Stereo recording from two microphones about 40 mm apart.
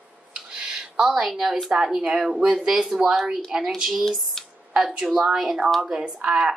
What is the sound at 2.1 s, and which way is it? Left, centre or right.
Speech, centre.